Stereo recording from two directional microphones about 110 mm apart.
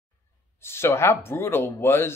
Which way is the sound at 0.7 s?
20° left (ahead or behind).